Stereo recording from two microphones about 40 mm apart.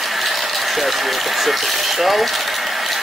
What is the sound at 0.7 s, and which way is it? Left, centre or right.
Speech, centre.